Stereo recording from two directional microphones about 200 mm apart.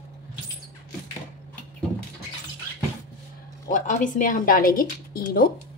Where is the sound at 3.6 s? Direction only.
40° left (ahead or behind).